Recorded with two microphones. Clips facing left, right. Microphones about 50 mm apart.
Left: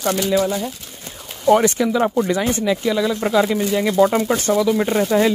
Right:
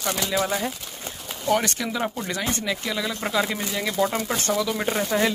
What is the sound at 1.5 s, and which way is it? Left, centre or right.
Speech, centre.